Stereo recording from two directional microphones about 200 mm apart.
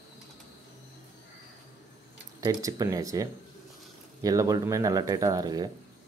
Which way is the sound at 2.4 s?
20° right (ahead or behind).